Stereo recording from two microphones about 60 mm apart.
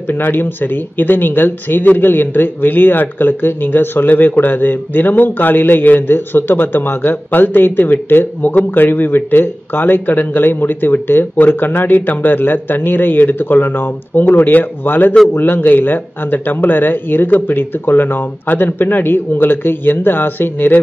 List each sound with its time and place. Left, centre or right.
0.1 s speech: left